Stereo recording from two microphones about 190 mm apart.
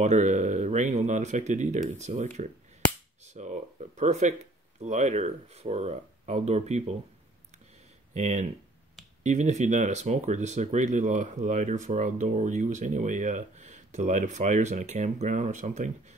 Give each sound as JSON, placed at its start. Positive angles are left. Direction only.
{"t": 0.0, "sound": "speech", "side_deg": -40}
{"t": 8.1, "sound": "speech", "side_deg": -40}